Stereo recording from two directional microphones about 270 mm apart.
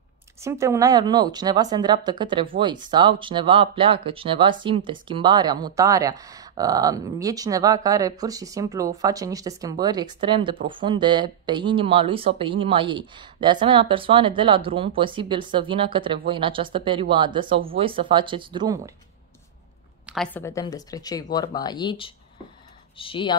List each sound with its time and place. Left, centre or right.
0.4 s speech: centre
20.1 s speech: centre